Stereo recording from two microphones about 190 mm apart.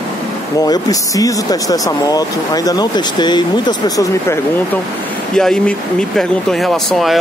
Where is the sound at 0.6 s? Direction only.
20° left (ahead or behind).